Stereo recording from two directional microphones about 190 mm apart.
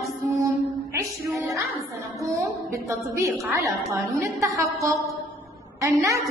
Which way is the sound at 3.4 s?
Centre (ahead or behind).